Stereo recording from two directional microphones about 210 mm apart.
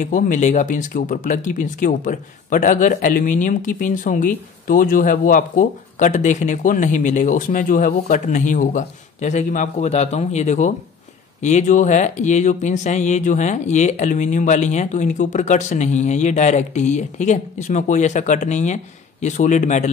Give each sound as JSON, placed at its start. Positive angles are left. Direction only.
{"t": 0.0, "sound": "speech", "side_deg": 40}